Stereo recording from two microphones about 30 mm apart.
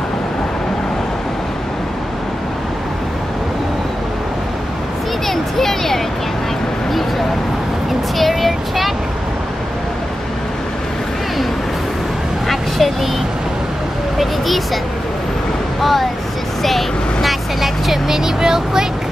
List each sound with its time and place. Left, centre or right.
5.3 s a sound: centre
12.4 s vehicle: centre
14.1 s vehicle: centre
15.8 s a sound: centre
16.6 s vehicle: centre
18.0 s vehicle: centre